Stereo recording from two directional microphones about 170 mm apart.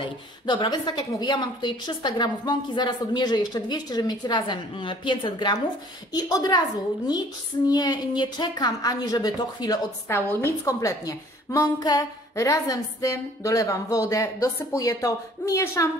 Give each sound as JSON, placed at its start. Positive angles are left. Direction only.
{"t": 0.0, "sound": "a woman's voice", "side_deg": 30}
{"t": 7.6, "sound": "a woman's voice", "side_deg": 20}